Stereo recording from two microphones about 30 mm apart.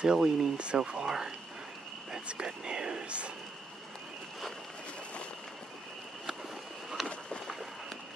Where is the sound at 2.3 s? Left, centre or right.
Right.